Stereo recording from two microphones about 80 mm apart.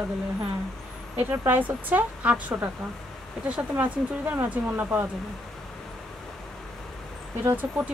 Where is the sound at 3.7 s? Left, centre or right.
Right.